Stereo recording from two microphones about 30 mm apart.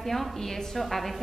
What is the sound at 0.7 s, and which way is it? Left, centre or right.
Speech, centre.